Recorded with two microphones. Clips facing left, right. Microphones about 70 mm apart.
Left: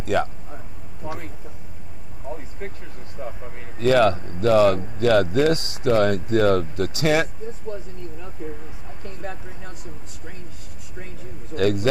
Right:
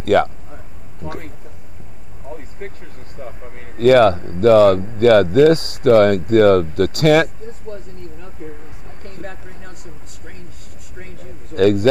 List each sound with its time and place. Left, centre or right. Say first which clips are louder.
0.0 s speech: right 8 dB; right
1.0 s speech: right 2 dB; centre
2.3 s speech: right 4 dB; centre
3.2 s speech: even; centre
3.4 s speech: right 1 dB; centre
3.7 s speech: right 6 dB; right
8.2 s speech: even; centre
11.1 s speech: right 7 dB; right